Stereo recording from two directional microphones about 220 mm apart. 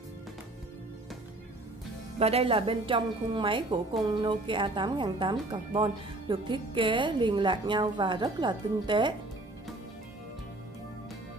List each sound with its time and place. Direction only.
2.1 s a woman's voice: 25° right (ahead or behind)